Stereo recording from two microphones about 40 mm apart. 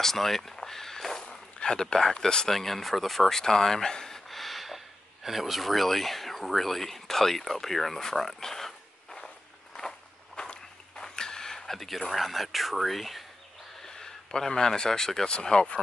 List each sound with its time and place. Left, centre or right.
0.0 s speech: centre
1.2 s speech: left
2.5 s speech: centre
9.8 s walk: centre
12.1 s speech: centre
13.8 s speech: centre